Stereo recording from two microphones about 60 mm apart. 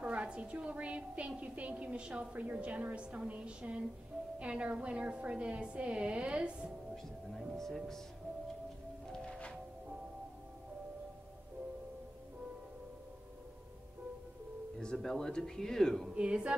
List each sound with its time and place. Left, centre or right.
0.0 s a woman's voice: centre
7.5 s speech: centre
9.0 s music: centre
14.8 s speech: centre
16.2 s a sound: centre